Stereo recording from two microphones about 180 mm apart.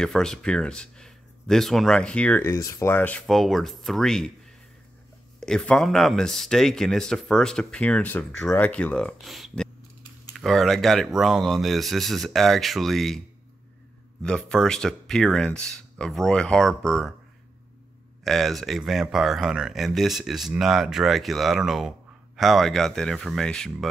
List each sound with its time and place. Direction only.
0.0 s speech: 5° left (ahead or behind)
5.4 s speech: 5° left (ahead or behind)
14.2 s speech: 5° left (ahead or behind)
18.2 s speech: centre (ahead or behind)